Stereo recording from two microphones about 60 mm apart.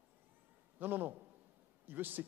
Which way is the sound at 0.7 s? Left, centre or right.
Right.